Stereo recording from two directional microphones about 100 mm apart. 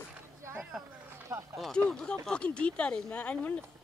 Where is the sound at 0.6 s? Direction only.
5° right (ahead or behind).